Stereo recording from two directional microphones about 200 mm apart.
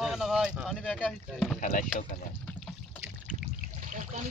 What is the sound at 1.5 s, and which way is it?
Speech, 40° left (ahead or behind).